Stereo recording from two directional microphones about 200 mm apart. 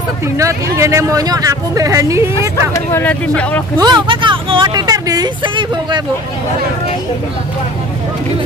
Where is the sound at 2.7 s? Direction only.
10° left (ahead or behind).